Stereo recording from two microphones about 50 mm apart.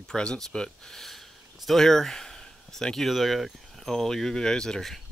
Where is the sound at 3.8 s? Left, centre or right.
Centre.